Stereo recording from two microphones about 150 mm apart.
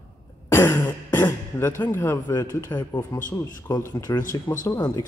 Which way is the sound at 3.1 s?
30° left (ahead or behind).